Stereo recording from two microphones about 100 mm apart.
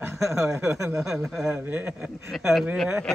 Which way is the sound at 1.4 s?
20° right (ahead or behind).